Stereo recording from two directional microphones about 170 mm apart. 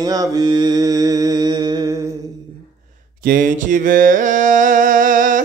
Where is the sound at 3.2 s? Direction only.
50° right (ahead or behind).